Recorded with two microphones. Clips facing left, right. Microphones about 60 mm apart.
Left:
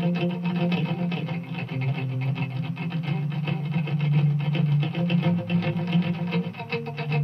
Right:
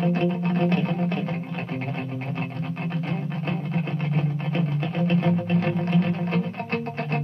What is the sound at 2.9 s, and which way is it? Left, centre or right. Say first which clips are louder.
Music: even; right.